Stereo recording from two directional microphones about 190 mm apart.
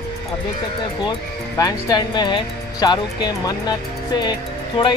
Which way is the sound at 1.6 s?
20° left (ahead or behind).